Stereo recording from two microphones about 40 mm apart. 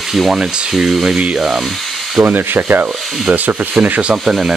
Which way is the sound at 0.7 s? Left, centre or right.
Centre.